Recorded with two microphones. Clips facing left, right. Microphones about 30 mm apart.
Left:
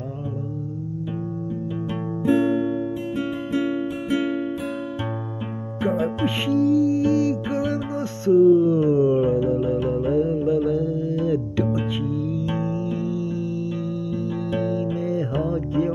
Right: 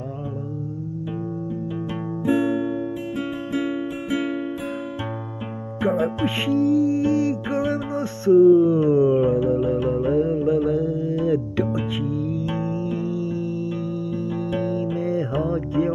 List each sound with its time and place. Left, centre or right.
2.2 s music: left
5.8 s music: right
6.4 s music: left
8.3 s music: right
8.7 s a sound: right
10.0 s music: right
10.7 s carnatic music: left
11.5 s music: right
14.3 s music: left
15.5 s music: right